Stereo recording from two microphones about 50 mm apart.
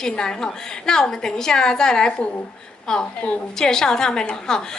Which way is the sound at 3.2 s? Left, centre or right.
Left.